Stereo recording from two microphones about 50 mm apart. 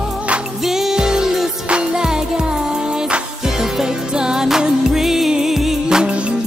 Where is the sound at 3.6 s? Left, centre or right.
Centre.